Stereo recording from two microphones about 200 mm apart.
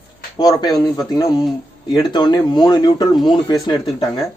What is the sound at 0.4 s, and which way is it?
A man's voice, 20° left (ahead or behind).